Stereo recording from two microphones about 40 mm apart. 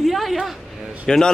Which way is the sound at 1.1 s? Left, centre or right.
Centre.